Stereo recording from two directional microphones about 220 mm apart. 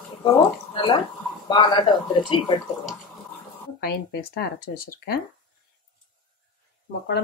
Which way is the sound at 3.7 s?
45° left (ahead or behind).